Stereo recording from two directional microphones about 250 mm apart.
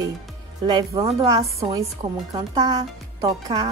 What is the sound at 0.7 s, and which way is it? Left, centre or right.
A woman's voice, centre.